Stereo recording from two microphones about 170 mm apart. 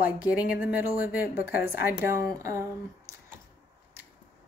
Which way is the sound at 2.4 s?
15° right (ahead or behind).